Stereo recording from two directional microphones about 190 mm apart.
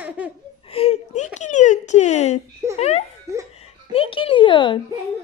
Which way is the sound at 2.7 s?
35° left (ahead or behind).